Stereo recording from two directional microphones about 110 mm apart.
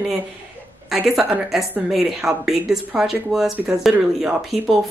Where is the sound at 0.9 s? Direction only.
10° right (ahead or behind).